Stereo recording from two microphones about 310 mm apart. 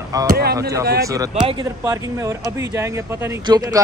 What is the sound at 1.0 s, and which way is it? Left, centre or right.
Speech, centre.